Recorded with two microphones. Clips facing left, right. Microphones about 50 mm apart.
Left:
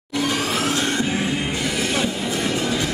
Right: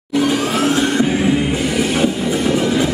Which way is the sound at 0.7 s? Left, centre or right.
Centre.